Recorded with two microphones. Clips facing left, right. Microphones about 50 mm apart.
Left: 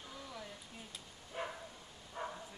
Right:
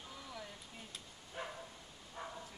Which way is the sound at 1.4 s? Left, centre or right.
Centre.